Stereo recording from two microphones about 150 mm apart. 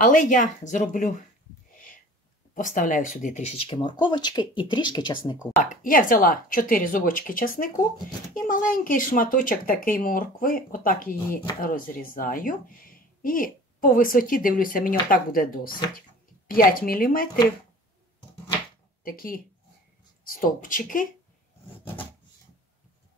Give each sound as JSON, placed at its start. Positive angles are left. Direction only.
{"t": 0.0, "sound": "speech", "side_deg": 60}
{"t": 2.5, "sound": "speech", "side_deg": 60}
{"t": 5.6, "sound": "a woman's voice", "side_deg": 60}
{"t": 19.0, "sound": "a woman's voice", "side_deg": 75}